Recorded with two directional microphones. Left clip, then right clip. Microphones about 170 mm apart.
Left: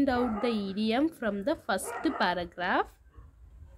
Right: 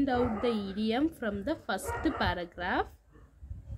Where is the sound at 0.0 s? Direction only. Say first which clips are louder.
Left 1 dB; 20° left (ahead or behind).